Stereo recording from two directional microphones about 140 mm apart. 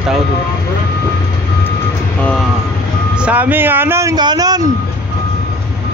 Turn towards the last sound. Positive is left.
turn(degrees=-30)  # may be behind; listen again after turning